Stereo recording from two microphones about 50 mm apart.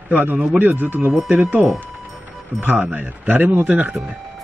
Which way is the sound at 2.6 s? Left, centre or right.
Right.